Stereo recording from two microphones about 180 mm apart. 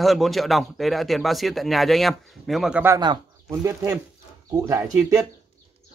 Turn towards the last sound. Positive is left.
turn(degrees=-15)  # may be behind; listen again after turning